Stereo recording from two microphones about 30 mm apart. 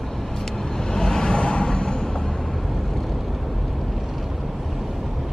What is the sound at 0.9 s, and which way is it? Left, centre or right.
Vehicle, left.